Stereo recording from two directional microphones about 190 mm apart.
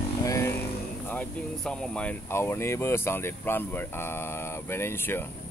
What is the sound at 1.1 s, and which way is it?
Speech, 5° left (ahead or behind).